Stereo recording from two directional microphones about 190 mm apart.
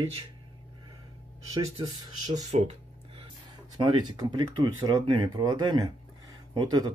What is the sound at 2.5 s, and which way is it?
Speech, 30° right (ahead or behind).